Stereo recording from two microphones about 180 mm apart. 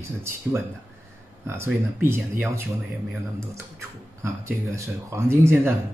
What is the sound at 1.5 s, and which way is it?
Speech, 15° right (ahead or behind).